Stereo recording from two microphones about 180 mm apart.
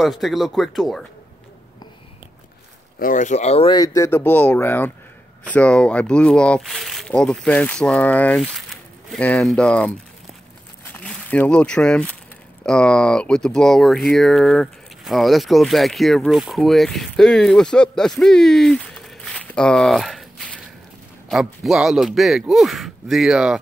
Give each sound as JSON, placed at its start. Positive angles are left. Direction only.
{"t": 0.0, "sound": "speech", "side_deg": 0}
{"t": 3.0, "sound": "speech", "side_deg": 45}